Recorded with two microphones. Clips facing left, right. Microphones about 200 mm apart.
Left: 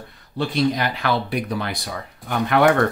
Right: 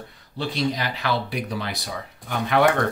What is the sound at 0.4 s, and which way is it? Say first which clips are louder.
Speech: left 5 dB; 55° left (ahead or behind).